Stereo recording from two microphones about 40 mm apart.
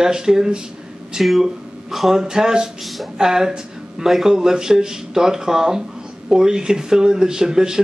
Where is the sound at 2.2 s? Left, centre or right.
Centre.